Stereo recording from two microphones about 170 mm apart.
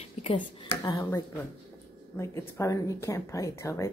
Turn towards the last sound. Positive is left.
turn(degrees=15)  # may be behind; listen again after turning